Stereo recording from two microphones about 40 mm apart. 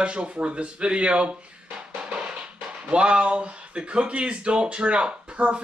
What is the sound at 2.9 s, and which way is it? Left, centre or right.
Speech, right.